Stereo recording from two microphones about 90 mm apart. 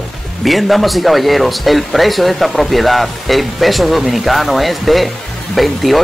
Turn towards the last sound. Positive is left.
turn(degrees=0)  # may be behind; listen again after turning